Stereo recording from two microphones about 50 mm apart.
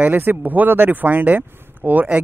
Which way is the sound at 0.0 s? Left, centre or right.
Right.